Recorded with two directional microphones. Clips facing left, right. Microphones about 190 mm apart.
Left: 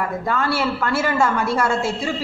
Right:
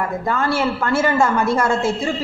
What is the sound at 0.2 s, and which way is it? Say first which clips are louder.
A woman's voice: right 2 dB; 45° right (ahead or behind).